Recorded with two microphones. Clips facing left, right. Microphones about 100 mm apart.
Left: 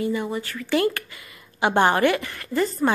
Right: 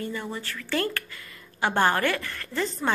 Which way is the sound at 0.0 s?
10° left (ahead or behind).